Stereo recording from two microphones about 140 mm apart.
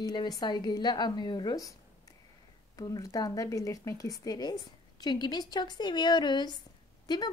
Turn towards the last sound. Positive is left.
turn(degrees=30)  # may be behind; listen again after turning